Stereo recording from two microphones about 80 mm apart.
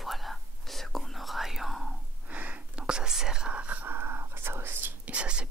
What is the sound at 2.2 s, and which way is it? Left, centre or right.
Whispering, centre.